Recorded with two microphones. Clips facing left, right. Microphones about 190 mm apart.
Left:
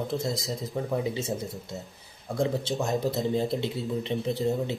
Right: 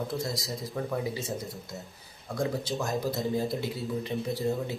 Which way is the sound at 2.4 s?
25° left (ahead or behind).